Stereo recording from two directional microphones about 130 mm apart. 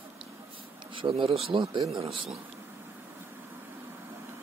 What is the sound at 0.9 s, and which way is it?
Speech, 40° right (ahead or behind).